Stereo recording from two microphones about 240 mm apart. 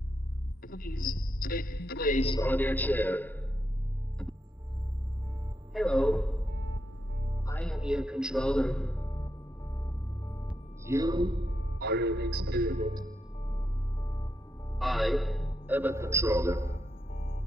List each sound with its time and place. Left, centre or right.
0.6 s a woman's voice: left
2.4 s a man's voice: centre
5.7 s a man's voice: centre
7.4 s a man's voice: centre
9.1 s music: centre
10.5 s music: centre
11.5 s music: left
11.8 s a man's voice: right
12.8 s speech: centre
13.5 s music: centre
14.8 s a man's voice: centre
17.1 s music: left